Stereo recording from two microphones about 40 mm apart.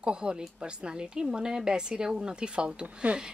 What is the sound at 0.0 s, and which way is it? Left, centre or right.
Speech, right.